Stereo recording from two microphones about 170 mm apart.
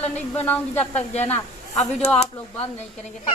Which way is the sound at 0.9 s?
40° left (ahead or behind).